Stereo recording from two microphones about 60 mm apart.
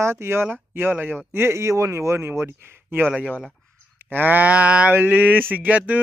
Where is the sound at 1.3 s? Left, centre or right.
Right.